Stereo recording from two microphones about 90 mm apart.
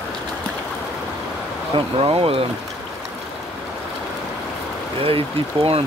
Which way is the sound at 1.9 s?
90° right.